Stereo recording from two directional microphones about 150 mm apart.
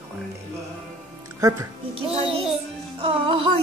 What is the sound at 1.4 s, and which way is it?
Speech, 25° right (ahead or behind).